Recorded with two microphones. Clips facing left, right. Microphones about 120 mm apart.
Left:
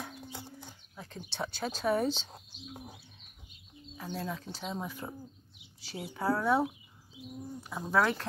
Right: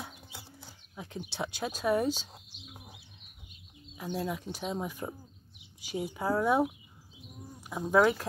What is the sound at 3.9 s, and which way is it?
Speech, 10° right (ahead or behind).